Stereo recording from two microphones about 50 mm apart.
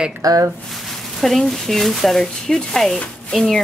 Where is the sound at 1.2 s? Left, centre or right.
Centre.